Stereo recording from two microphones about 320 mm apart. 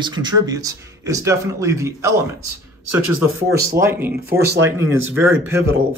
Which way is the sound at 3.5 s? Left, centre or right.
Centre.